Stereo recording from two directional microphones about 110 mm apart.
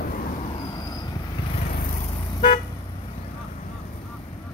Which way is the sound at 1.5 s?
65° left (ahead or behind).